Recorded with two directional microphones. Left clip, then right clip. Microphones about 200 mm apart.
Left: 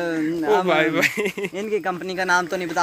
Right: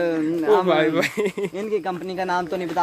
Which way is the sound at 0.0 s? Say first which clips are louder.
Right 2 dB; 60° left (ahead or behind).